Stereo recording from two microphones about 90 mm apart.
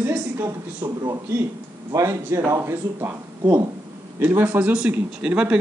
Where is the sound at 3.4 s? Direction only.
40° right (ahead or behind).